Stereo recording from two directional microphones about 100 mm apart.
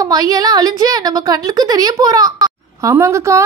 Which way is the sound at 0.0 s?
40° right (ahead or behind).